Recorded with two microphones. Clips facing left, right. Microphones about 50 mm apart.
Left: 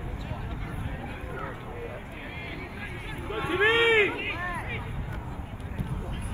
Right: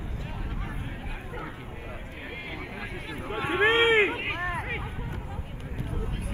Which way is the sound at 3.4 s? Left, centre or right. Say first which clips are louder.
Right 1 dB; right.